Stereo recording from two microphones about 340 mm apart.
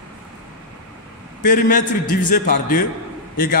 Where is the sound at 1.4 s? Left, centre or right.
Left.